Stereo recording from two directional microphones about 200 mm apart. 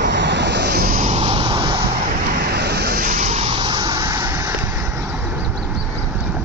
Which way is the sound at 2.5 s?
55° right (ahead or behind).